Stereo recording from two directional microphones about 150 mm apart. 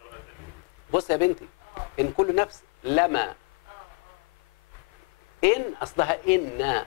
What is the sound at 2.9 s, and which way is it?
Speech, 30° left (ahead or behind).